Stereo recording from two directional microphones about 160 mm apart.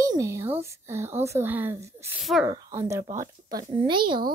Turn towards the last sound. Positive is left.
turn(degrees=-30)  # may be behind; listen again after turning